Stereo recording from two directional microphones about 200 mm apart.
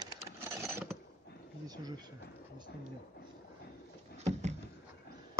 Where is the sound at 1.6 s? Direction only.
20° right (ahead or behind).